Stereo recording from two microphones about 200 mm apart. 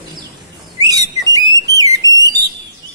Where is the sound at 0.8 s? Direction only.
20° right (ahead or behind).